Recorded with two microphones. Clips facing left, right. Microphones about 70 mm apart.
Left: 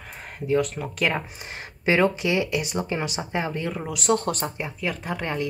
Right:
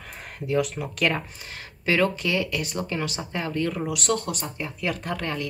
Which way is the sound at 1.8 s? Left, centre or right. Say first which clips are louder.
Left 2 dB; left.